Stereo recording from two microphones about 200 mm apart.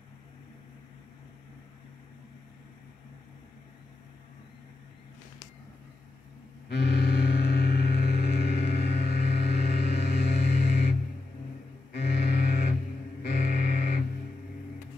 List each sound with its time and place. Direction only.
6.7 s music: 55° left (ahead or behind)
11.9 s double bass: 55° left (ahead or behind)
13.2 s music: 50° left (ahead or behind)